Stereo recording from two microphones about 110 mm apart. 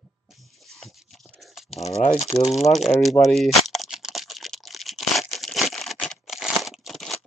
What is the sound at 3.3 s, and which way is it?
Crumpling, centre (ahead or behind).